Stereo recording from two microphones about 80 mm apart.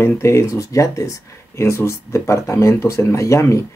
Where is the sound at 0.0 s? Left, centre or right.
Left.